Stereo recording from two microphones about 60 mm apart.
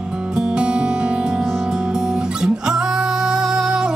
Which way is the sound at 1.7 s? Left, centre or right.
Centre.